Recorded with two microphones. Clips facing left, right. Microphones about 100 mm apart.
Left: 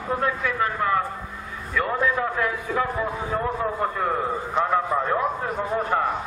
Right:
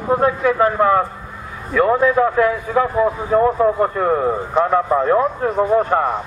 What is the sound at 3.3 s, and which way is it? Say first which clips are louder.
Speech: right 13 dB; 50° right (ahead or behind).